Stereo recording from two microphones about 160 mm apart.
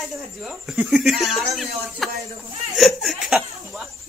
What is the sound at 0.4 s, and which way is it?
Speech, 5° right (ahead or behind).